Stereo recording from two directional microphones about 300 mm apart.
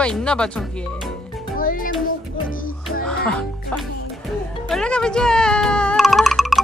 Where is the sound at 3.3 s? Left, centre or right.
Centre.